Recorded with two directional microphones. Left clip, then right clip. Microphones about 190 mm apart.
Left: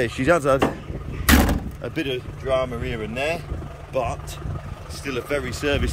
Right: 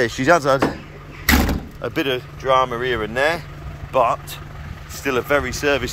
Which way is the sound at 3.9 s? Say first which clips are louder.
Right 8 dB; 5° left (ahead or behind).